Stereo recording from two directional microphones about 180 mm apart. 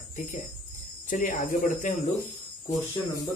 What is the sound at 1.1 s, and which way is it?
Speech, 45° left (ahead or behind).